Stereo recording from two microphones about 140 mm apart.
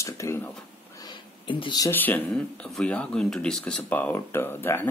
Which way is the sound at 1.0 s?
30° left (ahead or behind).